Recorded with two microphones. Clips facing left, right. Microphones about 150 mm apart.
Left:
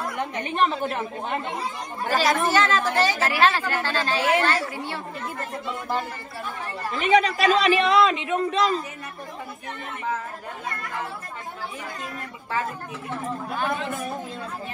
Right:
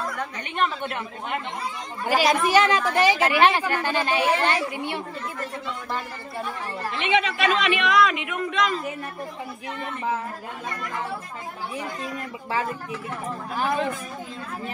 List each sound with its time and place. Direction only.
0.1 s a sound: 20° left (ahead or behind)
0.6 s a woman's voice: 35° left (ahead or behind)
2.0 s speech: 15° right (ahead or behind)
7.0 s a woman's voice: 40° left (ahead or behind)